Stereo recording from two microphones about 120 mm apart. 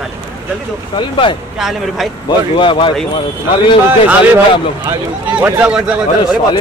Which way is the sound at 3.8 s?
15° right (ahead or behind).